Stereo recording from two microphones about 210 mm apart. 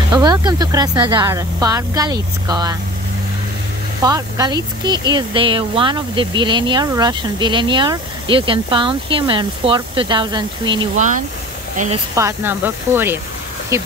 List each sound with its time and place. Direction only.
0.1 s speech: 20° right (ahead or behind)
4.0 s speech: 20° right (ahead or behind)
11.0 s speech: 35° right (ahead or behind)
12.2 s speech: 10° right (ahead or behind)